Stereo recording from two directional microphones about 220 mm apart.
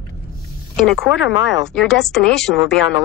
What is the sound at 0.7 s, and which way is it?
Speech, centre (ahead or behind).